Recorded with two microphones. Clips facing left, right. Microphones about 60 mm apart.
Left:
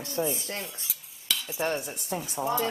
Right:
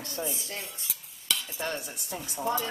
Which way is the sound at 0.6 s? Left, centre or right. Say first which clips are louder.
Left 2 dB; centre.